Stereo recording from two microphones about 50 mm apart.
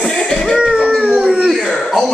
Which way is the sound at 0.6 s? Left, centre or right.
Centre.